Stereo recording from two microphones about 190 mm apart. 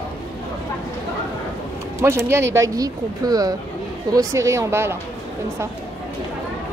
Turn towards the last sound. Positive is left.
turn(degrees=-15)  # may be behind; listen again after turning